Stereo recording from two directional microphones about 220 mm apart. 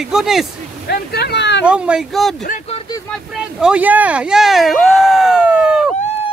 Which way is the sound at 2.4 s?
30° left (ahead or behind).